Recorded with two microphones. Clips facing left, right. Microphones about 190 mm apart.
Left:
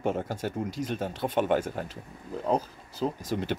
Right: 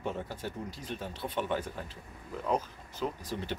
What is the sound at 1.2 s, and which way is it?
Speech, 90° left.